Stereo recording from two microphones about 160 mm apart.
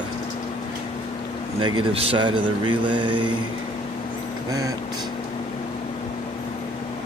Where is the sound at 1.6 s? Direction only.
30° right (ahead or behind).